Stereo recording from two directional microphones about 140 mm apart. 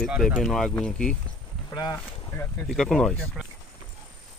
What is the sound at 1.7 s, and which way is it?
Speech, 25° left (ahead or behind).